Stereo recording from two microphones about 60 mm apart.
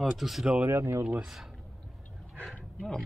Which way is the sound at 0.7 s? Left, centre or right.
Right.